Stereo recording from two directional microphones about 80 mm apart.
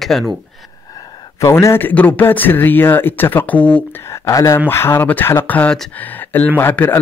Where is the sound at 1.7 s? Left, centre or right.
Left.